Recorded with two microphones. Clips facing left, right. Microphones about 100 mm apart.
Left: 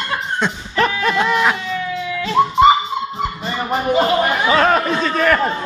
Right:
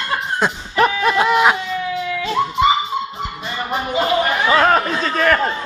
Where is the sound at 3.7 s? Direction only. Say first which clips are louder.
Left 3 dB; 35° left (ahead or behind).